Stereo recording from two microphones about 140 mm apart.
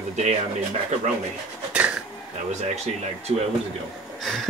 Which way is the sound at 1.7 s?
5° right (ahead or behind).